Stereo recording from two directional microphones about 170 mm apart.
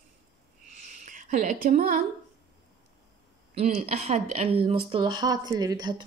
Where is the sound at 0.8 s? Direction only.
45° right (ahead or behind).